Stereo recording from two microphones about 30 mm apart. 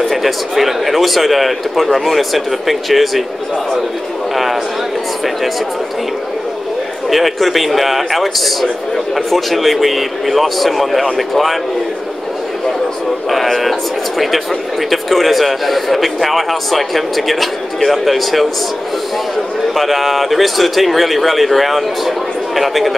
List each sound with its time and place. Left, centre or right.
0.1 s a man's voice: centre
7.1 s a man's voice: centre
13.3 s a man's voice: centre
19.7 s a man's voice: centre